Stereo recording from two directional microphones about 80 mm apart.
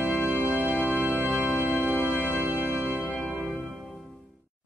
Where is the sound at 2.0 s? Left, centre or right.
Left.